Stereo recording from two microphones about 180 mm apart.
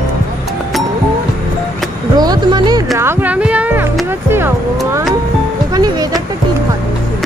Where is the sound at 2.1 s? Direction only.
20° right (ahead or behind).